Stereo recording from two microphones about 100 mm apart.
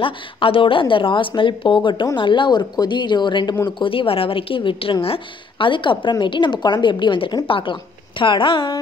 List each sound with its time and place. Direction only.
0.0 s a woman's voice: 60° left (ahead or behind)
3.6 s a woman's voice: 60° left (ahead or behind)